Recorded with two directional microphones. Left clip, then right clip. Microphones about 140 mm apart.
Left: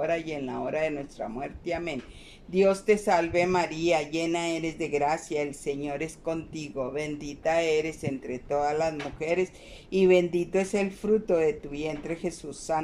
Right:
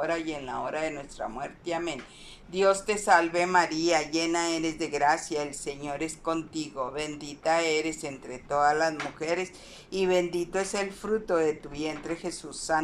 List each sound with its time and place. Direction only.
0.3 s speech: 35° left (ahead or behind)